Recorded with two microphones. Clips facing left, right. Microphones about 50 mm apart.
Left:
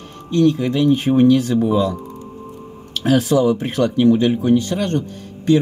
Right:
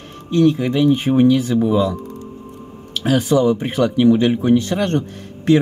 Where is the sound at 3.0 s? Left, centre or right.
Centre.